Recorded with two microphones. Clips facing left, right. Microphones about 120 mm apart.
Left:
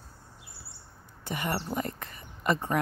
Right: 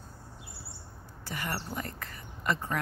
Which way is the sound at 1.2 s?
20° left (ahead or behind).